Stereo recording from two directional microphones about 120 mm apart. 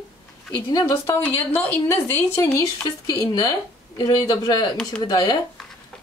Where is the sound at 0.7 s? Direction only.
25° left (ahead or behind).